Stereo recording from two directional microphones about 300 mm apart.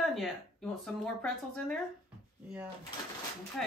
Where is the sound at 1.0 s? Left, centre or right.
Centre.